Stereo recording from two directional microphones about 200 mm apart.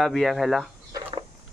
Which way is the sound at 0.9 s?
25° right (ahead or behind).